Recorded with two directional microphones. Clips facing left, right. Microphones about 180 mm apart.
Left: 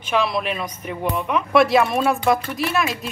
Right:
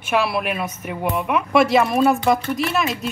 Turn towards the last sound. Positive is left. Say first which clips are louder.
# right 1 dB
turn(degrees=0)  # may be behind; listen again after turning